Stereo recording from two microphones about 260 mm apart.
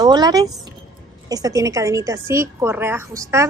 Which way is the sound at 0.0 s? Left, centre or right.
Centre.